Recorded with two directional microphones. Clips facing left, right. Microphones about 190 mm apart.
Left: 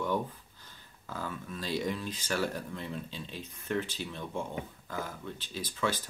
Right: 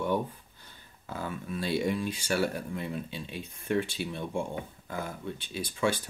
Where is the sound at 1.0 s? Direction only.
20° right (ahead or behind).